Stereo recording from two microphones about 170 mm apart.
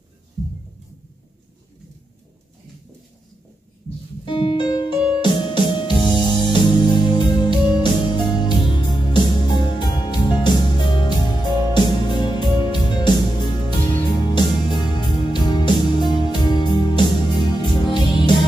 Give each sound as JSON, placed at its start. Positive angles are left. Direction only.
{"t": 4.3, "sound": "music", "side_deg": 25}